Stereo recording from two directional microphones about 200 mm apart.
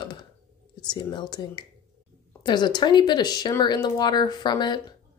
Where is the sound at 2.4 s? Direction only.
20° left (ahead or behind).